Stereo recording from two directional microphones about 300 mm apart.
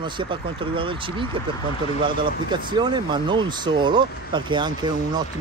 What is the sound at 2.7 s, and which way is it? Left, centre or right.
Speech, centre.